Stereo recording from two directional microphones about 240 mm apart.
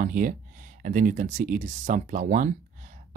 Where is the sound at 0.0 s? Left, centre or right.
Right.